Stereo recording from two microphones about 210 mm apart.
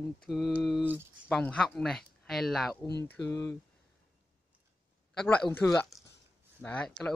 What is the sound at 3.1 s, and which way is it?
Speech, 15° left (ahead or behind).